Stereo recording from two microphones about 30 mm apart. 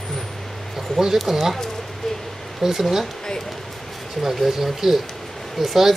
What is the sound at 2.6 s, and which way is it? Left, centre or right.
Speech, centre.